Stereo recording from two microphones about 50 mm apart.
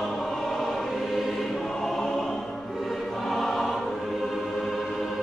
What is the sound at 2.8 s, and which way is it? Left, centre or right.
Music, centre.